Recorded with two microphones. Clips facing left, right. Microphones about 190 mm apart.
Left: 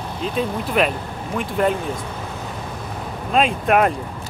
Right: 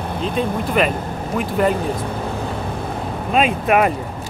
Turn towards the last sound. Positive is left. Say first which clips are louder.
# right 1 dB
turn(degrees=-5)  # may be behind; listen again after turning